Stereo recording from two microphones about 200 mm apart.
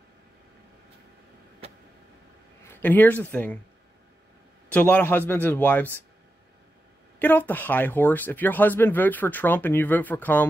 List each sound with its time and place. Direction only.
1.6 s vehicle: 30° right (ahead or behind)
2.7 s speech: 10° left (ahead or behind)
4.6 s speech: 5° left (ahead or behind)
7.2 s speech: 10° left (ahead or behind)